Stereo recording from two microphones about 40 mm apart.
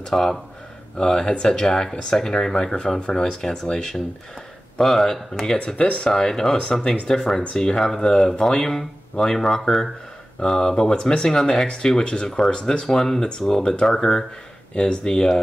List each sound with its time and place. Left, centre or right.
0.1 s speech: centre
5.7 s speech: left
6.0 s speech: centre
11.2 s speech: centre
12.0 s speech: left
12.3 s speech: centre